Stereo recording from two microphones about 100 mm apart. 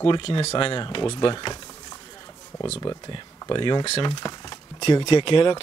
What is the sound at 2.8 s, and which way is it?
Speech, 50° left (ahead or behind).